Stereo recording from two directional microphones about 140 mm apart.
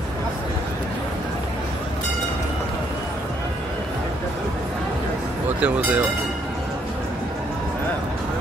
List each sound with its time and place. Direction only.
5.6 s speech: 15° right (ahead or behind)